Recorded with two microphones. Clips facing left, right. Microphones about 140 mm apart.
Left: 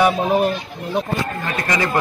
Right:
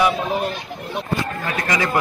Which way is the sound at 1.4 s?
10° right (ahead or behind).